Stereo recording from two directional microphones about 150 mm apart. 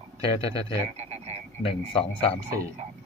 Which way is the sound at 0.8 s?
45° right (ahead or behind).